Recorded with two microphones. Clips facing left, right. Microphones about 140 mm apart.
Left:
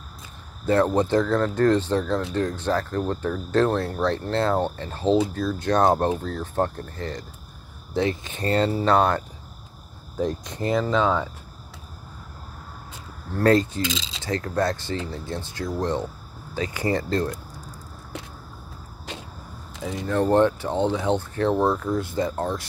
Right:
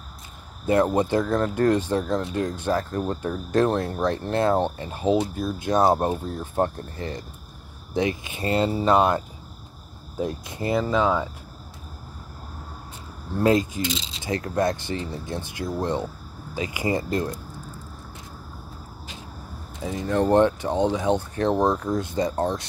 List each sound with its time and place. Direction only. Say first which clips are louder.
0.7 s speech: even; 15° right (ahead or behind)
13.3 s speech: left 1 dB; 10° right (ahead or behind)
20.1 s speech: even; 20° right (ahead or behind)